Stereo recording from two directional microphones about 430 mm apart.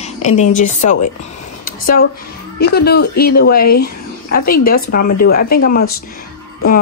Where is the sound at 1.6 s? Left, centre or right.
Centre.